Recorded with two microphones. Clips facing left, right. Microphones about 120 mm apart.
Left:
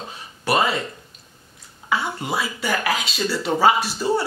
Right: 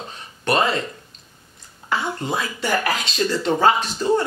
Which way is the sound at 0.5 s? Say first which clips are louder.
Right 1 dB; 10° left (ahead or behind).